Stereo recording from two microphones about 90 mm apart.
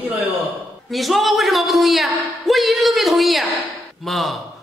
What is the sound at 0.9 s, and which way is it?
A man's voice, centre (ahead or behind).